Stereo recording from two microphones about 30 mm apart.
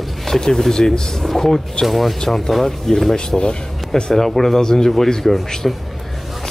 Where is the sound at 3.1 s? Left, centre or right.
Left.